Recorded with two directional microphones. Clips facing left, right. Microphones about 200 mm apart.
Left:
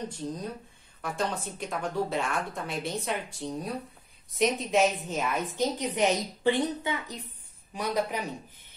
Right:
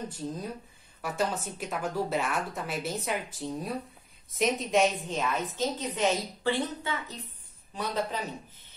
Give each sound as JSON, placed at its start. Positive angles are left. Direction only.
{"t": 1.0, "sound": "a woman's voice", "side_deg": -5}